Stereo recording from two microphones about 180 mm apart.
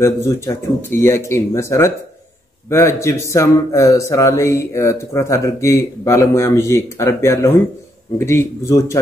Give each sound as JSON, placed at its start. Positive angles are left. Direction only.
{"t": 0.0, "sound": "speech", "side_deg": 15}